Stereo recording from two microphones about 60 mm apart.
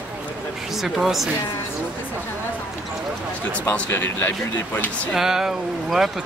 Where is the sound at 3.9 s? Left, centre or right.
Left.